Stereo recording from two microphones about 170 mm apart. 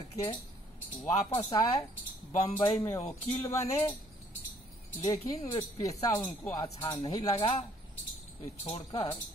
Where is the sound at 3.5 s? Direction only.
15° left (ahead or behind).